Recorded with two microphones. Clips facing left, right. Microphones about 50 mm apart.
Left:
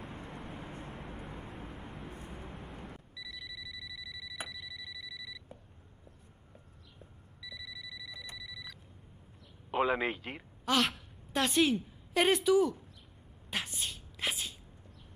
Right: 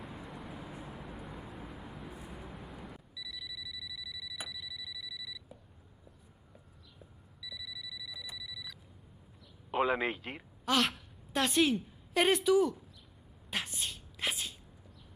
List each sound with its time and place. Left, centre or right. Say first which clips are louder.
0.0 s vehicle: left 1 dB; centre
3.2 s alarm clock: even; centre
7.3 s alarm clock: even; centre
9.7 s a woman's voice: even; centre
13.5 s a sound: even; centre